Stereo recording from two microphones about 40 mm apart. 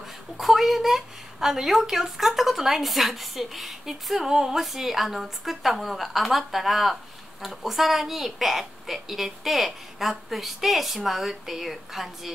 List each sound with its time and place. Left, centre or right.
0.4 s a woman's voice: centre